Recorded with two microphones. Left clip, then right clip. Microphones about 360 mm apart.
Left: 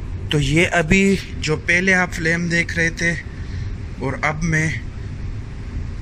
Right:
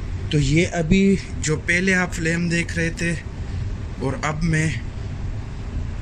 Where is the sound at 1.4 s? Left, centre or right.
Centre.